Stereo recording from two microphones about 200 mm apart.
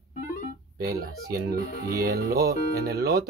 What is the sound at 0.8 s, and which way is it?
Speech, 50° right (ahead or behind).